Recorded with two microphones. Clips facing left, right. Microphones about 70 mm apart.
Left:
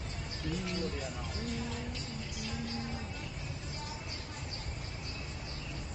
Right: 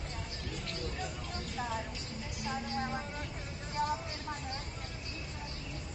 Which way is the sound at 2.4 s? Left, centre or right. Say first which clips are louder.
Right 5 dB; right.